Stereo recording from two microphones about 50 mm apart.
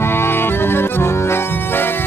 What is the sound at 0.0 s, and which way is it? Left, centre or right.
Music, left.